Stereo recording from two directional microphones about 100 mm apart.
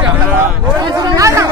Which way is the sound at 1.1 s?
30° right (ahead or behind).